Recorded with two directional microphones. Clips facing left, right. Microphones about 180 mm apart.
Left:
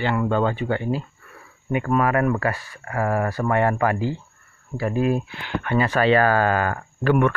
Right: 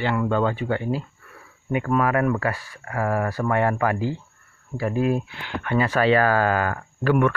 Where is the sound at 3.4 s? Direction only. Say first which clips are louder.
Left 2 dB; 20° left (ahead or behind).